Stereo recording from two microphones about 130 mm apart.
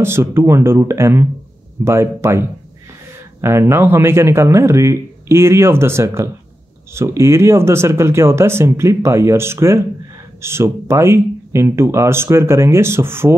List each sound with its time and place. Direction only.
0.0 s speech: 20° right (ahead or behind)